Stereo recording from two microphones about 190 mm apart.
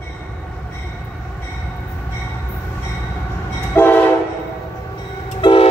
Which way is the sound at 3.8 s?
10° left (ahead or behind).